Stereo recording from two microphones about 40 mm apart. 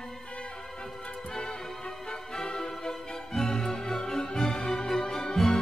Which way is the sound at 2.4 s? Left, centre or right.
Centre.